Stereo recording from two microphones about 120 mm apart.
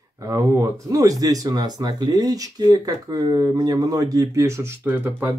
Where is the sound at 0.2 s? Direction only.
25° right (ahead or behind).